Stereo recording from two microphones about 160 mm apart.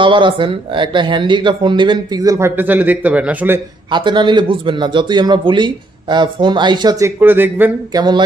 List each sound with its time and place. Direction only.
0.0 s speech: 30° right (ahead or behind); by 3.6 s 10° right (ahead or behind)
3.9 s speech: 30° right (ahead or behind)
7.2 s speech: 10° right (ahead or behind)
7.9 s speech: 25° right (ahead or behind)